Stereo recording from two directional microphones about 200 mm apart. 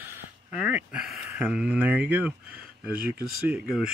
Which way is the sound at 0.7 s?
5° right (ahead or behind).